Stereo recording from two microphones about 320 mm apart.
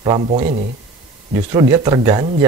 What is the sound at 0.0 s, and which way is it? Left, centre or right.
Speech, centre.